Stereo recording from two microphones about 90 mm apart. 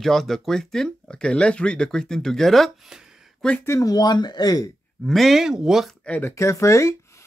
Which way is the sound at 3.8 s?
50° left (ahead or behind).